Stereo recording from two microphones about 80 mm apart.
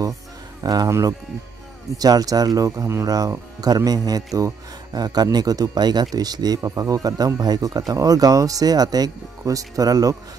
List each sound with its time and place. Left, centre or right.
0.6 s speech: right
2.0 s speech: right